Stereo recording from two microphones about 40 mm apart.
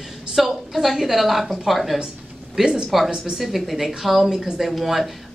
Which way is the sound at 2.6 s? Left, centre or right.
Centre.